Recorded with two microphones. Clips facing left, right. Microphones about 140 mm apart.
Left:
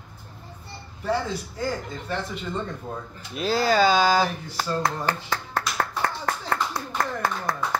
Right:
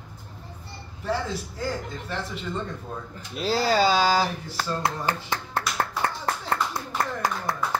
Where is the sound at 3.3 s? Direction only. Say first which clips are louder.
Left 1 dB; 30° right (ahead or behind).